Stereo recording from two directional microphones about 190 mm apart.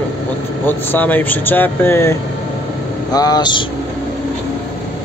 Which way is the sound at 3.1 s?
20° left (ahead or behind).